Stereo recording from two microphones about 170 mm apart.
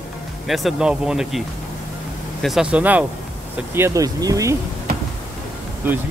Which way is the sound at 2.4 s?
5° right (ahead or behind).